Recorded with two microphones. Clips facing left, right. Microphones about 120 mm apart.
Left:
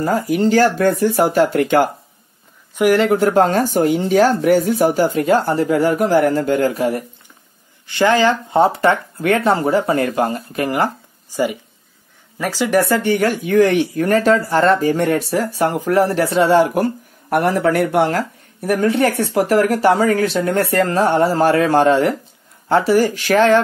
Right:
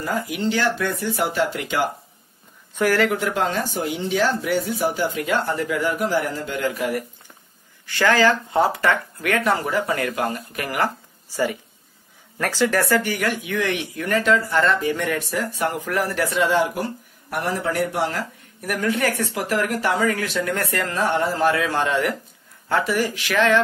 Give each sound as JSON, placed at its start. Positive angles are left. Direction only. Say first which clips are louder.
{"t": 0.0, "sound": "speech", "louder": "left 8 dB", "side_deg": 40}
{"t": 2.8, "sound": "speech", "louder": "left 5 dB", "side_deg": 20}
{"t": 3.1, "sound": "speech", "louder": "left 9 dB", "side_deg": 40}
{"t": 7.8, "sound": "speech", "louder": "left 4 dB", "side_deg": 20}
{"t": 18.6, "sound": "speech", "louder": "left 7 dB", "side_deg": 30}